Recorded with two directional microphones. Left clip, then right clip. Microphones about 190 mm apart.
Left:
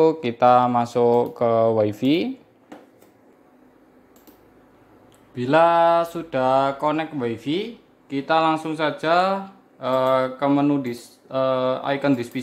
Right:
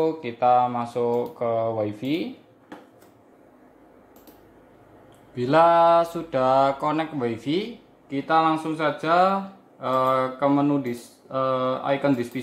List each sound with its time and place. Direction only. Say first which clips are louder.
0.0 s mantra: left 5 dB; 50° left (ahead or behind)
0.9 s speech: left 7 dB; 55° left (ahead or behind)
1.4 s mantra: left 6 dB; 50° left (ahead or behind)
5.3 s speech: left 1 dB; 20° left (ahead or behind)
9.8 s mantra: left 2 dB; 30° left (ahead or behind)
11.2 s speech: left 3 dB; 30° left (ahead or behind)